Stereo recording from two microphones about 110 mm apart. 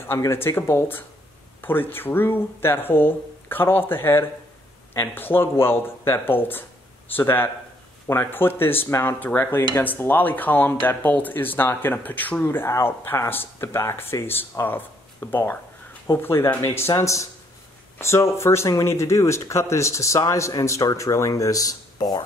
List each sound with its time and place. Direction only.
0.2 s speech: 20° left (ahead or behind); by 22.2 s 40° left (ahead or behind)